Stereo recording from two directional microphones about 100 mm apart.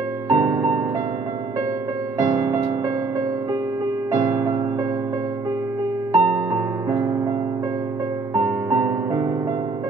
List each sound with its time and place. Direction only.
0.3 s music: 35° right (ahead or behind)
2.1 s music: 35° right (ahead or behind)
4.1 s music: 30° right (ahead or behind)
6.1 s music: 30° right (ahead or behind)
8.4 s music: 40° right (ahead or behind)